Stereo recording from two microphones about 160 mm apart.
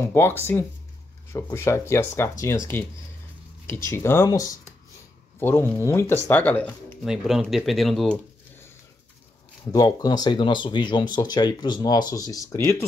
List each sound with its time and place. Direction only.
0.0 s speech: 15° left (ahead or behind)
3.6 s speech: 15° left (ahead or behind)
5.4 s speech: 15° left (ahead or behind)
7.1 s speech: centre (ahead or behind)
9.7 s speech: 25° left (ahead or behind)